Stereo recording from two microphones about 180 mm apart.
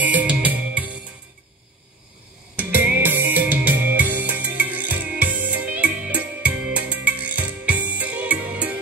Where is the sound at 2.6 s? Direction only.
10° right (ahead or behind).